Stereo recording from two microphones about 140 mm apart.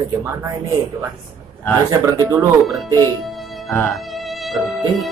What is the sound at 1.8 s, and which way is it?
Speech, 25° right (ahead or behind).